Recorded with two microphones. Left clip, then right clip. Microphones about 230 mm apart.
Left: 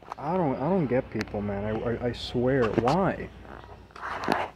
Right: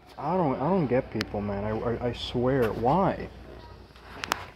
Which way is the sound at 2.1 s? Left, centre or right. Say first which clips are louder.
Left 2 dB; left.